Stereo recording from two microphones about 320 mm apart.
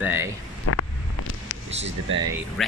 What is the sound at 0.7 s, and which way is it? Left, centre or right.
Vehicle, left.